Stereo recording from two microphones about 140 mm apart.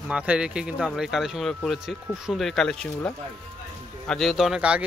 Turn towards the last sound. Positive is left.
turn(degrees=-5)  # may be behind; listen again after turning